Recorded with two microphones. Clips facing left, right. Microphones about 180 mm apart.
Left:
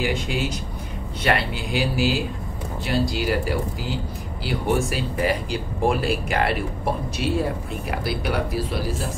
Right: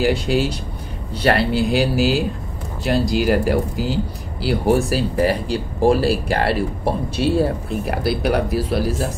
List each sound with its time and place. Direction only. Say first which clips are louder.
0.0 s speech: right 7 dB; 35° right (ahead or behind)
7.9 s speech: right 6 dB; 40° right (ahead or behind)